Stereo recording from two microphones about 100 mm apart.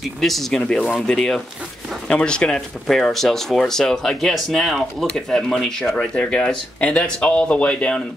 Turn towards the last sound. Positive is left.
turn(degrees=10)  # may be behind; listen again after turning